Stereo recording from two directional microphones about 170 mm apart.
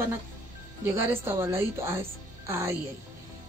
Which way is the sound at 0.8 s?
15° right (ahead or behind).